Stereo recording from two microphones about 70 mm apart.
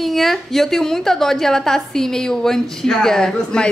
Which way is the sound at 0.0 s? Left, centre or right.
Centre.